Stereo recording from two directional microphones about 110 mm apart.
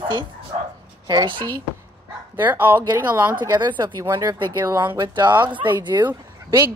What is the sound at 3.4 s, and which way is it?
A woman's voice, 45° right (ahead or behind).